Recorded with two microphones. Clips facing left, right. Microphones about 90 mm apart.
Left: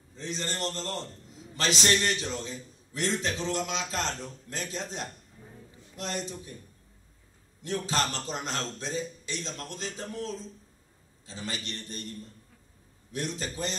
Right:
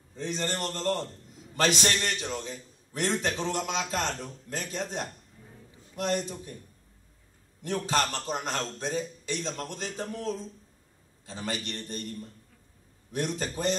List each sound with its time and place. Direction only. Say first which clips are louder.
0.1 s a man's voice: right 3 dB; 55° right (ahead or behind)
7.6 s a man's voice: right 2 dB; 50° right (ahead or behind)
13.1 s a man's voice: right 3 dB; 50° right (ahead or behind)